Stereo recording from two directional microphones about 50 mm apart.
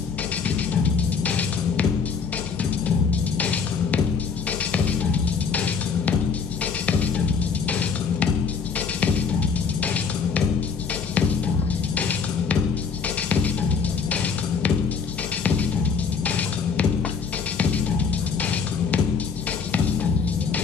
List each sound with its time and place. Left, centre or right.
0.6 s music: left
3.1 s music: left
11.1 s drum: left
13.3 s music: left